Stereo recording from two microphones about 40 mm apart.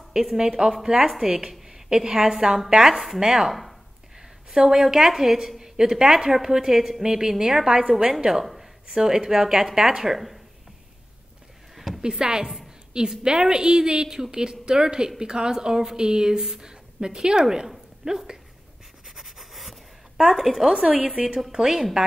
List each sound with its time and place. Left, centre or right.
0.1 s a woman's voice: centre
4.2 s a woman's voice: centre
8.9 s a woman's voice: centre
11.7 s a sound: centre
12.0 s a woman's voice: centre
19.0 s a sound: centre
20.2 s a woman's voice: centre
20.8 s a woman's voice: right